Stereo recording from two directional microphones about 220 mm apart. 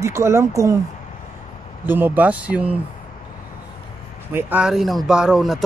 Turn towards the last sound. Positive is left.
turn(degrees=0)  # may be behind; listen again after turning